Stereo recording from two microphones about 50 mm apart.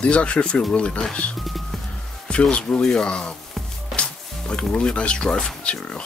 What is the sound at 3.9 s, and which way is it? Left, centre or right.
Music, centre.